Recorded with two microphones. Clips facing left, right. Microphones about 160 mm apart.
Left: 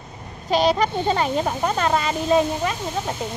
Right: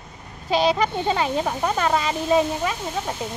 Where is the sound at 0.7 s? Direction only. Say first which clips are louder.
Left 1 dB; 5° right (ahead or behind).